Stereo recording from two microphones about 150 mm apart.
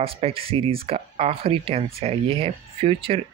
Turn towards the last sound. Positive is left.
turn(degrees=-40)  # may be behind; listen again after turning